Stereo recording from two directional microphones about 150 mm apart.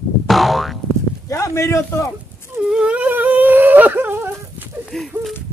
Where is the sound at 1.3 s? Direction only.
20° left (ahead or behind).